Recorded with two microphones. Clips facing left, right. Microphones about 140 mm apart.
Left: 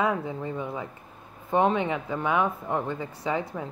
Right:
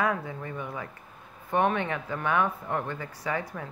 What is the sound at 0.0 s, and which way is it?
Speech, 20° left (ahead or behind).